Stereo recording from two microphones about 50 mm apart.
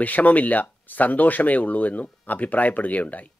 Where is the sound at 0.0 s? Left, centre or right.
Left.